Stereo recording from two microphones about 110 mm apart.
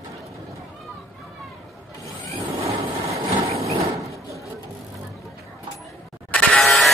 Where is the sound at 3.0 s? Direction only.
70° right (ahead or behind).